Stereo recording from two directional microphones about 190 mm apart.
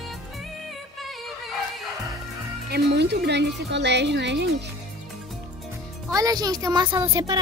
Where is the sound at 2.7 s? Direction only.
60° right (ahead or behind).